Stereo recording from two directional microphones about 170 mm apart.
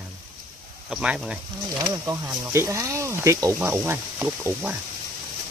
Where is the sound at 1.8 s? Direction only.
20° right (ahead or behind).